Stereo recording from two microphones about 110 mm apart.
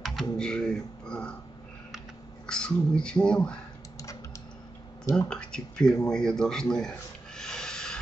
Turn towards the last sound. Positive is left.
turn(degrees=5)  # may be behind; listen again after turning